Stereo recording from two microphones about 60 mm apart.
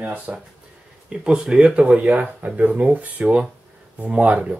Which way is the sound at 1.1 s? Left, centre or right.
Centre.